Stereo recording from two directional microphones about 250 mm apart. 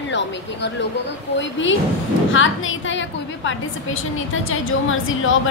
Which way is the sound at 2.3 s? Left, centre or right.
Left.